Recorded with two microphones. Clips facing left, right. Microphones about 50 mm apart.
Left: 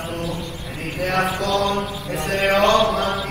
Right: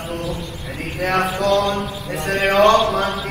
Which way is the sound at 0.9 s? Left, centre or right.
Right.